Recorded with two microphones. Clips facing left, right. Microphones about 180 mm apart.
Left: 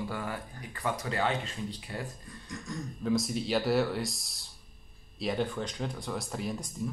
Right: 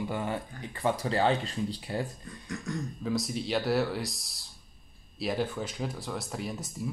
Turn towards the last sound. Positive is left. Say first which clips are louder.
# left 1 dB
turn(degrees=-5)  # may be behind; listen again after turning